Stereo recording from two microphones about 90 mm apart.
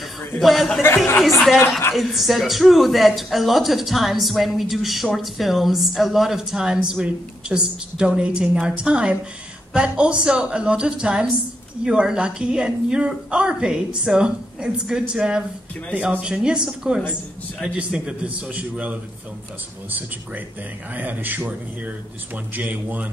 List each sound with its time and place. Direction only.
0.4 s speech: centre (ahead or behind)
2.0 s a woman's voice: centre (ahead or behind); by 23.0 s 20° right (ahead or behind)